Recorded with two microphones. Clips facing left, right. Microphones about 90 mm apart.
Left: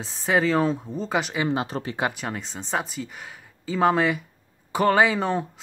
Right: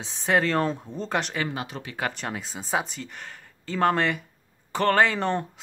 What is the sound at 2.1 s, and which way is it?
Speech, centre (ahead or behind).